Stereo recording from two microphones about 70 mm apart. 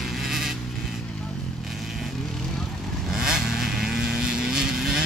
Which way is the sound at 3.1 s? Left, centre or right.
Centre.